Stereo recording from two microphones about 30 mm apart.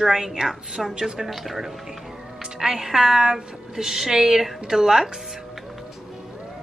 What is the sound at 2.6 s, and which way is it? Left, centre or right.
A woman's voice, centre.